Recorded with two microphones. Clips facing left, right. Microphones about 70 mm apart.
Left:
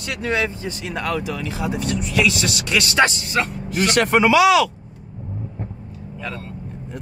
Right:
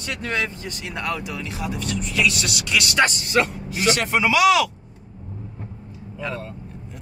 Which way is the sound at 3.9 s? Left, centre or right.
Left.